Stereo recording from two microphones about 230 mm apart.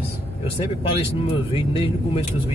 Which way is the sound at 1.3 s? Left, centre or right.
Left.